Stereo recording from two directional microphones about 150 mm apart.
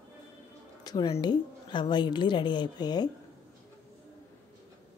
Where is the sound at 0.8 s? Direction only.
25° left (ahead or behind).